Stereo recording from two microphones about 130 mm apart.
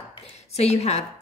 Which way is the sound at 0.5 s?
55° left (ahead or behind).